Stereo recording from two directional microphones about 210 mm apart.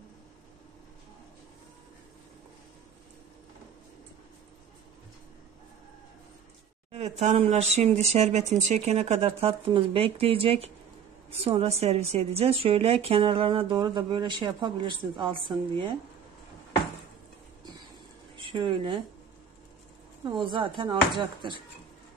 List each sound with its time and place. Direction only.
6.9 s a woman's voice: 30° right (ahead or behind)
18.3 s speech: 25° right (ahead or behind)
20.2 s a woman's voice: 25° right (ahead or behind)